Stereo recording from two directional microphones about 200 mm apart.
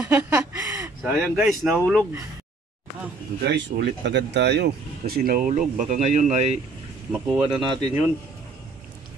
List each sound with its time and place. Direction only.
0.0 s speech: 10° right (ahead or behind)
3.4 s speech: 60° right (ahead or behind); by 6.4 s 35° right (ahead or behind)
7.1 s speech: 5° right (ahead or behind)
7.4 s speech: 20° right (ahead or behind)